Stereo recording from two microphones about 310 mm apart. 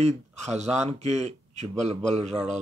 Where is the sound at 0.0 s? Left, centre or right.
Right.